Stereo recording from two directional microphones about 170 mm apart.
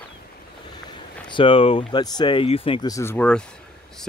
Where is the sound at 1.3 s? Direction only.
30° left (ahead or behind); by 3.4 s 10° left (ahead or behind).